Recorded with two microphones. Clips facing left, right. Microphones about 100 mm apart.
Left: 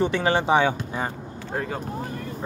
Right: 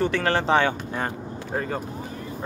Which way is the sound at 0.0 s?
15° left (ahead or behind).